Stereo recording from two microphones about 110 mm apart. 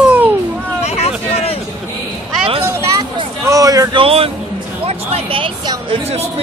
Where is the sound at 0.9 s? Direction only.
70° left (ahead or behind).